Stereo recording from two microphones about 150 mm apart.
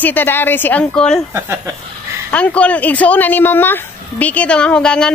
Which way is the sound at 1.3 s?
15° right (ahead or behind).